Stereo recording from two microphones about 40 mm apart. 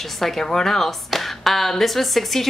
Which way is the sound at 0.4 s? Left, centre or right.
Centre.